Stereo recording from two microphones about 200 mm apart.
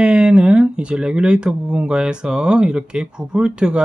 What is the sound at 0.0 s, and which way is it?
Speech, 5° right (ahead or behind).